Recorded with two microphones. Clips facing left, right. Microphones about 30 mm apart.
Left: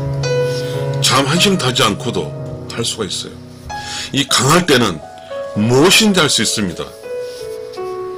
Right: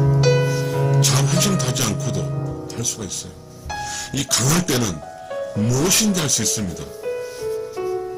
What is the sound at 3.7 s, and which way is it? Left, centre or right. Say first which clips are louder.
Music: left 6 dB; left.